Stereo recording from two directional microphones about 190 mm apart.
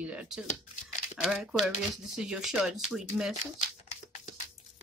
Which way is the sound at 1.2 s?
Centre (ahead or behind).